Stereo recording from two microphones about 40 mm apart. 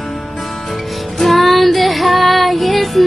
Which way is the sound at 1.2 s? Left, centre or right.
Centre.